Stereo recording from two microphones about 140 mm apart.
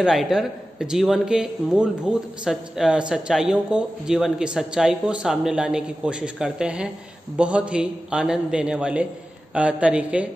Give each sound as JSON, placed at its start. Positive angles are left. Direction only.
{"t": 0.0, "sound": "a man's voice", "side_deg": -5}